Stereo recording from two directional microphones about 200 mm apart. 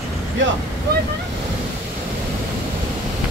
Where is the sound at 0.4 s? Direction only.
70° right (ahead or behind).